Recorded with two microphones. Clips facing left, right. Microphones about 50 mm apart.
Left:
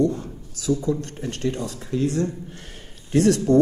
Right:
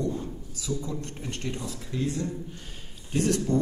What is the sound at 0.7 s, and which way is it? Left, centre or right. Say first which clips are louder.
Speech: left 9 dB; left.